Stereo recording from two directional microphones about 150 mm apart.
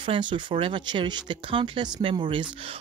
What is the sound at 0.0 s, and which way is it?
Speech, 35° right (ahead or behind).